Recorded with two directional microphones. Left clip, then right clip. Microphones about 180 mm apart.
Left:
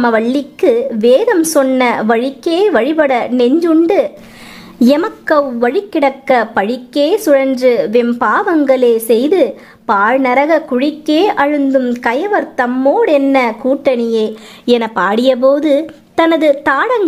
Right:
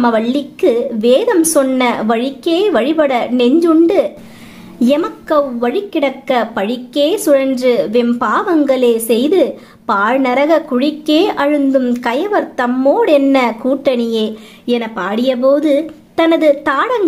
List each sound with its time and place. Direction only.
0.0 s a woman's voice: 30° left (ahead or behind)
4.7 s a woman's voice: 35° left (ahead or behind); by 14.0 s 20° left (ahead or behind)
14.7 s a woman's voice: 40° left (ahead or behind)